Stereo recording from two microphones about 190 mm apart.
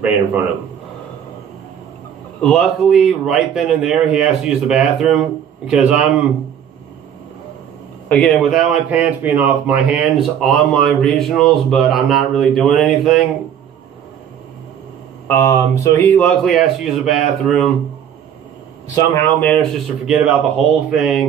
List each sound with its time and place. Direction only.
2.4 s speech: centre (ahead or behind)
8.1 s speech: 5° left (ahead or behind)
15.2 s speech: 10° left (ahead or behind)
19.1 s speech: 10° left (ahead or behind)
20.1 s speech: 5° right (ahead or behind)